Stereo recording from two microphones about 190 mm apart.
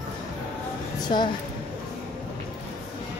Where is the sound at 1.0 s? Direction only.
25° left (ahead or behind).